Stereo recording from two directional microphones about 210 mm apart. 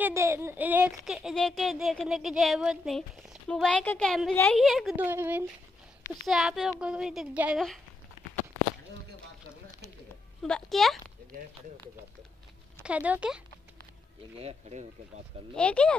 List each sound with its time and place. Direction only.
0.0 s speech: 15° right (ahead or behind)
10.4 s speech: centre (ahead or behind)
12.8 s speech: 5° right (ahead or behind)
14.4 s speech: 30° right (ahead or behind)
15.5 s speech: 5° left (ahead or behind)